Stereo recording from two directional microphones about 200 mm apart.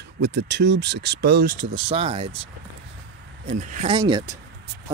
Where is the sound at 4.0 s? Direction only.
20° right (ahead or behind).